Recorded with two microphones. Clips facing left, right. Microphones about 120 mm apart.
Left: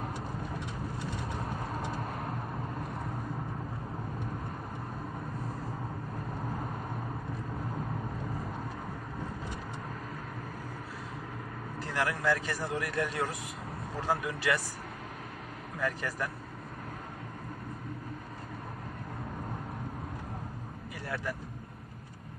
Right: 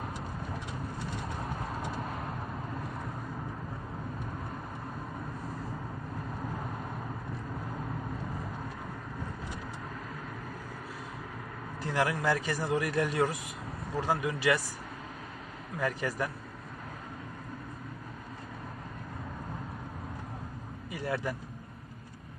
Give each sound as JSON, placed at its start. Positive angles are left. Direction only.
{"t": 11.9, "sound": "speech", "side_deg": -20}
{"t": 15.8, "sound": "speech", "side_deg": -15}
{"t": 20.9, "sound": "vehicle", "side_deg": -20}